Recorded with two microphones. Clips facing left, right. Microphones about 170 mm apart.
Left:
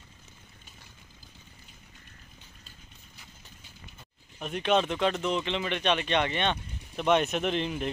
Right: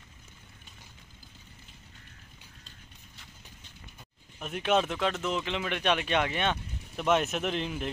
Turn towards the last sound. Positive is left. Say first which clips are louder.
# left 2 dB
turn(degrees=0)  # may be behind; listen again after turning